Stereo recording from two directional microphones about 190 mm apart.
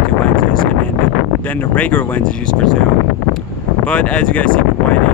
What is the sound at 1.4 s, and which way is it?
Speech, 10° left (ahead or behind).